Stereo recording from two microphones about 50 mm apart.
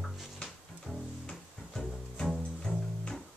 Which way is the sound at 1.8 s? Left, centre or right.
Centre.